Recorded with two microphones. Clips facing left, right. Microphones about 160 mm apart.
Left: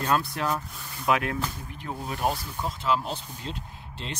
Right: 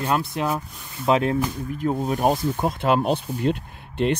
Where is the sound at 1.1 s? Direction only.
30° right (ahead or behind).